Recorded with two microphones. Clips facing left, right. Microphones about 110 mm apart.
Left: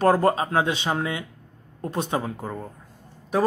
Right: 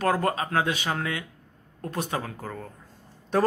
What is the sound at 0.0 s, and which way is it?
A man's voice, 30° left (ahead or behind).